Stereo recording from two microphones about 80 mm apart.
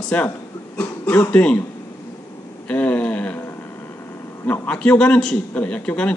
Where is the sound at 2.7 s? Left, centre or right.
Centre.